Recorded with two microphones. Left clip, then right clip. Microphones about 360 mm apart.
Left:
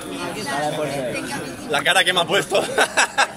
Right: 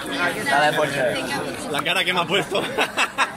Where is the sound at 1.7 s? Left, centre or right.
Left.